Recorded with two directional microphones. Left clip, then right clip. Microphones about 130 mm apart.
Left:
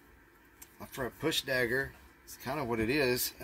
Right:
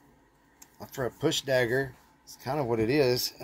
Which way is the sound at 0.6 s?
30° right (ahead or behind).